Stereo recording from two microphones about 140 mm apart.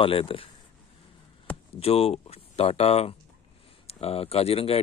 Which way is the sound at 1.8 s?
45° left (ahead or behind).